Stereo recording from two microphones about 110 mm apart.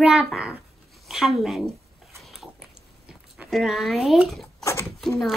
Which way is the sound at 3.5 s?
Centre (ahead or behind).